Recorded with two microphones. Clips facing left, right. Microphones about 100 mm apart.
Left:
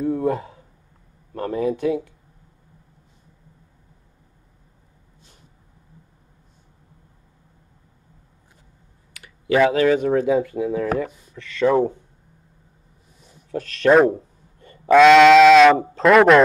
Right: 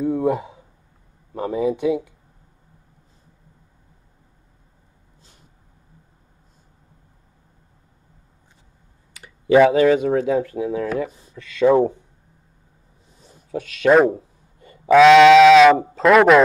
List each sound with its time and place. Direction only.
0.0 s a sound: 15° right (ahead or behind)
1.3 s speech: 10° right (ahead or behind)
9.1 s clicking: 30° right (ahead or behind)
9.6 s speech: 10° right (ahead or behind)
10.2 s speech: centre (ahead or behind)
11.3 s speech: 15° right (ahead or behind)
13.5 s speech: 5° right (ahead or behind)